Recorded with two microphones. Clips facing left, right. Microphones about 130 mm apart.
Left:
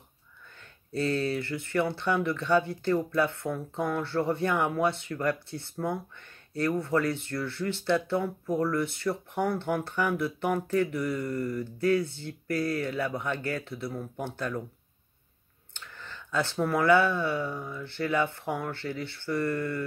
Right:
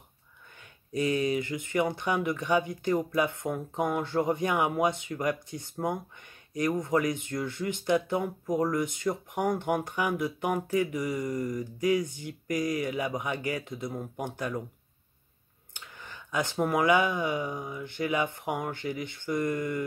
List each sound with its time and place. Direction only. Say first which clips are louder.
0.9 s speech: right 1 dB; 15° right (ahead or behind)
15.7 s speech: left 1 dB; 15° right (ahead or behind)